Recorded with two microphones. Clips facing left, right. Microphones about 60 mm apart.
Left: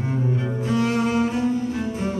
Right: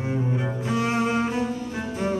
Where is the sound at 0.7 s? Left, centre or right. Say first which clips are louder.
Left 2 dB; right.